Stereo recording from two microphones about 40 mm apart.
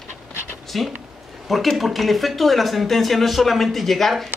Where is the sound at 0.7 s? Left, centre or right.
Centre.